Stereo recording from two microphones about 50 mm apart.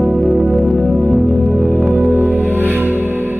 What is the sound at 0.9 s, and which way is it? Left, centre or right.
Music, right.